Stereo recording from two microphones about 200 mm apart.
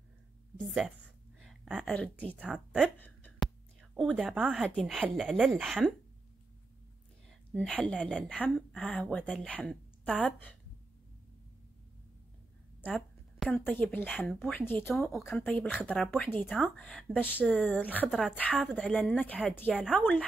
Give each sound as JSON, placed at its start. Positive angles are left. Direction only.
{"t": 1.4, "sound": "a woman's voice", "side_deg": 0}
{"t": 2.3, "sound": "a woman's voice", "side_deg": -5}
{"t": 7.5, "sound": "a woman's voice", "side_deg": 5}
{"t": 12.8, "sound": "a woman's voice", "side_deg": 5}